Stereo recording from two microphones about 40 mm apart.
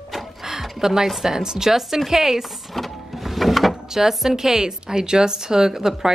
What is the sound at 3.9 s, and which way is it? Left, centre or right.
A woman's voice, centre.